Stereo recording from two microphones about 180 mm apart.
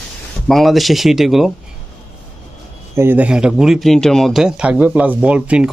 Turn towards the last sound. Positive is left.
turn(degrees=-5)  # may be behind; listen again after turning